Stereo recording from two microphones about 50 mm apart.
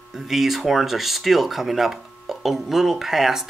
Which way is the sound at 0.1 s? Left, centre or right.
Centre.